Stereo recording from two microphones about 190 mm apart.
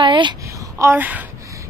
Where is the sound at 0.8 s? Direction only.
10° right (ahead or behind).